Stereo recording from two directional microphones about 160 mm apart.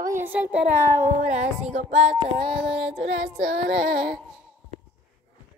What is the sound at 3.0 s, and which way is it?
Child singing, 90° right.